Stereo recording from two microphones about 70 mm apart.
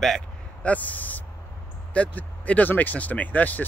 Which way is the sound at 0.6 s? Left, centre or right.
Left.